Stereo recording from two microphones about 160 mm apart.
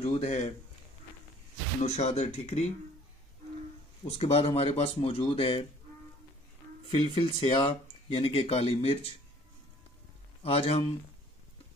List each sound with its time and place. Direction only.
0.0 s speech: 45° left (ahead or behind)
1.8 s speech: 45° left (ahead or behind)
4.2 s speech: 40° left (ahead or behind)
6.9 s speech: 35° left (ahead or behind)
10.4 s speech: 40° left (ahead or behind)